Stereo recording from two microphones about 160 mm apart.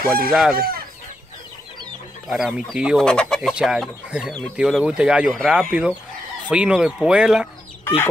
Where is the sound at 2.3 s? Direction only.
5° right (ahead or behind).